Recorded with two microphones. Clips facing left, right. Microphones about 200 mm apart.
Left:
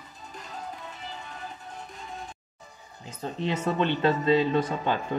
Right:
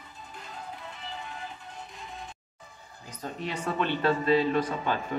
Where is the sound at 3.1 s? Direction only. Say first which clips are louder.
Left 5 dB; 25° left (ahead or behind).